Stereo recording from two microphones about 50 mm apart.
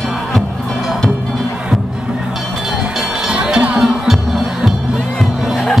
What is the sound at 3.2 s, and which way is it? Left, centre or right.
Music, centre.